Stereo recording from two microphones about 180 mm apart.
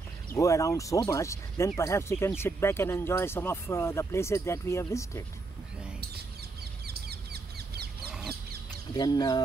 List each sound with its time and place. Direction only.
0.3 s speech: 15° left (ahead or behind)
6.9 s bird: 60° right (ahead or behind)
8.9 s speech: 20° left (ahead or behind)